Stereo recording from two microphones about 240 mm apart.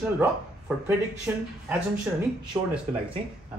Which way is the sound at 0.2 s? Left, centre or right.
Centre.